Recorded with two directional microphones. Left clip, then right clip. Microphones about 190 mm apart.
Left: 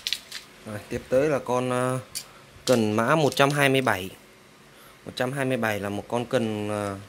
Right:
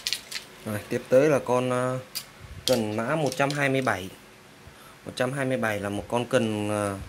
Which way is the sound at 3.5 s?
30° left (ahead or behind).